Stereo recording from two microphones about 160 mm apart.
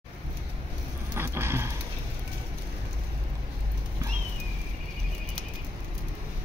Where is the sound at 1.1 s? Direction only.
15° right (ahead or behind).